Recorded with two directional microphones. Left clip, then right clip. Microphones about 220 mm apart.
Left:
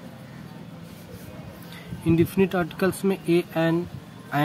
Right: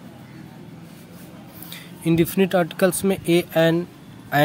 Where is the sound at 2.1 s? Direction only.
35° right (ahead or behind).